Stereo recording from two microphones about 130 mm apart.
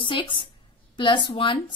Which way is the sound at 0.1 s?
40° left (ahead or behind).